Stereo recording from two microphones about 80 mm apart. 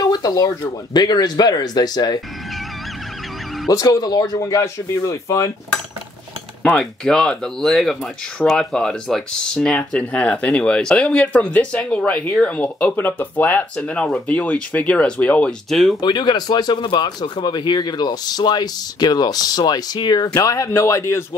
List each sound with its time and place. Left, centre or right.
0.0 s a sound: left
0.9 s speech: left
3.6 s speech: left
6.6 s speech: centre
15.7 s speech: centre
16.0 s speech: left
20.3 s speech: left
20.7 s speech: left